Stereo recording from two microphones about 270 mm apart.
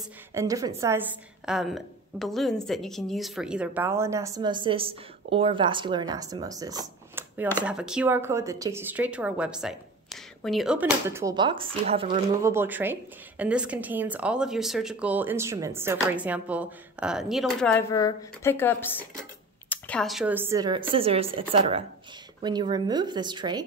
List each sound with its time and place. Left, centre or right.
0.3 s a woman's voice: centre
12.4 s a woman's voice: centre